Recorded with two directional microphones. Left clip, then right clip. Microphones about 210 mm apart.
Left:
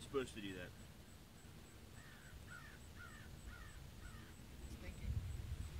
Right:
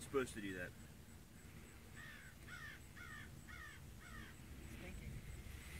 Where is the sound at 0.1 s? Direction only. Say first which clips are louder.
Right 2 dB; 40° right (ahead or behind).